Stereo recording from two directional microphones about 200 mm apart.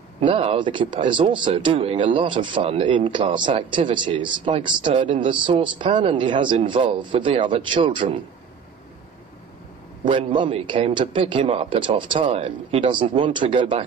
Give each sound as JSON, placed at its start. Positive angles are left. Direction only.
{"t": 0.2, "sound": "a man's voice", "side_deg": -30}
{"t": 10.0, "sound": "a man's voice", "side_deg": -25}